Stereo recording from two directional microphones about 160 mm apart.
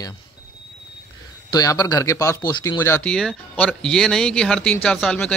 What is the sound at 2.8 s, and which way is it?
Speech, 10° left (ahead or behind).